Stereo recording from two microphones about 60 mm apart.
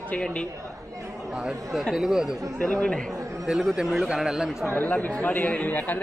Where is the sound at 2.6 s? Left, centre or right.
Centre.